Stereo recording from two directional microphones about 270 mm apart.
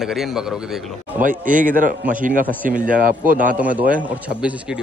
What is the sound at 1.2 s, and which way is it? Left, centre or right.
Speech, right.